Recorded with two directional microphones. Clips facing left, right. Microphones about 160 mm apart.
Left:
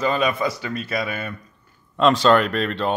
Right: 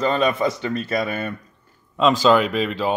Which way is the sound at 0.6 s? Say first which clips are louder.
Right 4 dB; 30° right (ahead or behind).